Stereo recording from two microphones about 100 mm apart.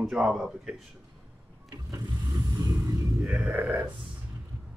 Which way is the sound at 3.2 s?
Centre (ahead or behind).